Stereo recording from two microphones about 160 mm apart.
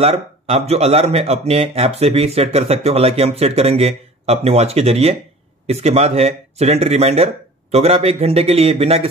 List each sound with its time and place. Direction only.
0.0 s speech: 40° right (ahead or behind)